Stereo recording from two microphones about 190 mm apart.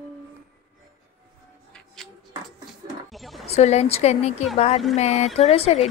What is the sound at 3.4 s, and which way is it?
Speech, 35° left (ahead or behind).